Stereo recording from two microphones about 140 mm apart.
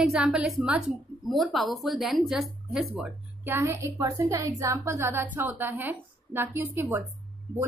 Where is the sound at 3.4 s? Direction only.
20° right (ahead or behind).